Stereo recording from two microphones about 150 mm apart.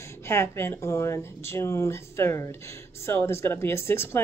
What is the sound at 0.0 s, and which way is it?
Speech, 15° left (ahead or behind).